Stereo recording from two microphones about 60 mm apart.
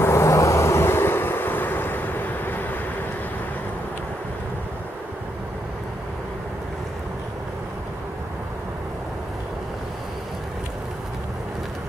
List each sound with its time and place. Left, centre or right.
0.0 s vehicle: left